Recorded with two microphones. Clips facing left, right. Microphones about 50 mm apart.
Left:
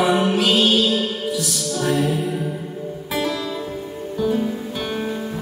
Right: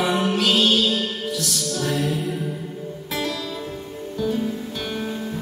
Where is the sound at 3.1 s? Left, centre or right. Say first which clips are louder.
Left 4 dB; centre.